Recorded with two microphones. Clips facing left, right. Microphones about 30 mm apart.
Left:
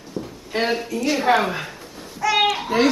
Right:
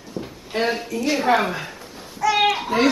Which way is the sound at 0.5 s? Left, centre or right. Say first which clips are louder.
Even; centre.